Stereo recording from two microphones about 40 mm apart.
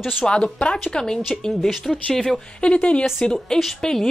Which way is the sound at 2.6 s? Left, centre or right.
Left.